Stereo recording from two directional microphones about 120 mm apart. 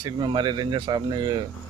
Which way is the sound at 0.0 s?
40° right (ahead or behind).